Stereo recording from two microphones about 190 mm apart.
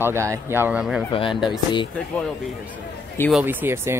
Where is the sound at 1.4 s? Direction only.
25° left (ahead or behind).